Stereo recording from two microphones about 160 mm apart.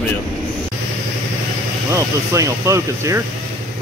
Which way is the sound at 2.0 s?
20° right (ahead or behind).